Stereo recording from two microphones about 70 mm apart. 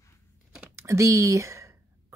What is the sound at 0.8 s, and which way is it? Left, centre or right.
Speech, right.